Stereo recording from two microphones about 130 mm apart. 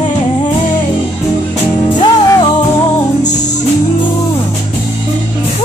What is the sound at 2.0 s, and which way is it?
Music, 25° left (ahead or behind).